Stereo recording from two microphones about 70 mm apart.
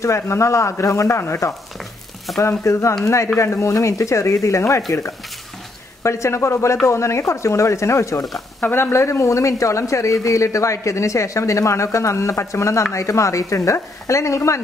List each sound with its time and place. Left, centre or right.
0.0 s speech: left
6.0 s speech: left
8.5 s speech: left